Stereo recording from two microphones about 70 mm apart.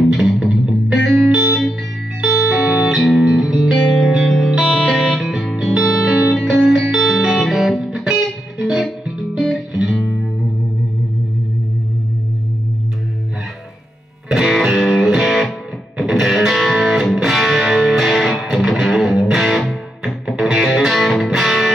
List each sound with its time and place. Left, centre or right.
0.1 s music: centre
2.5 s music: centre
14.3 s music: centre